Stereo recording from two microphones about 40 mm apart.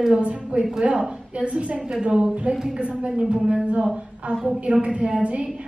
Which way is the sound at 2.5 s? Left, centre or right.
Centre.